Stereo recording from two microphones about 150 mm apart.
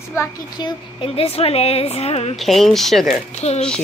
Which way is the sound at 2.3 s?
Centre (ahead or behind).